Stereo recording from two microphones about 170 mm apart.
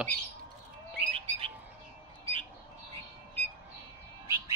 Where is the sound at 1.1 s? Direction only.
35° right (ahead or behind).